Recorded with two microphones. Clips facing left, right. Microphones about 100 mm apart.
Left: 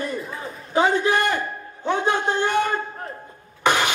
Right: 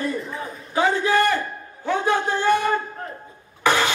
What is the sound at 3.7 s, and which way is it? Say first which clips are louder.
Vehicle: even; 15° left (ahead or behind).